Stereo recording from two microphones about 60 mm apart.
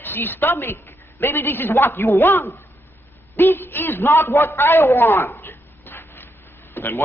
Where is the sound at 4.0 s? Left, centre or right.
Left.